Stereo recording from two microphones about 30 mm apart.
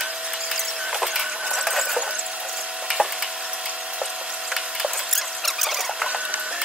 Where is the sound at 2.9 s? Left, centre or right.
Centre.